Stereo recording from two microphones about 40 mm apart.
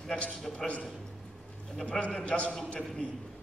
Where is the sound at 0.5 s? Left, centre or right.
Left.